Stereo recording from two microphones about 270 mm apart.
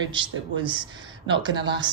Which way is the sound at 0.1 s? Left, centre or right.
Centre.